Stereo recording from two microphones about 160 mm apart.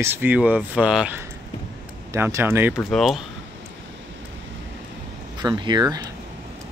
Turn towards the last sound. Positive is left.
turn(degrees=-25)  # may be behind; listen again after turning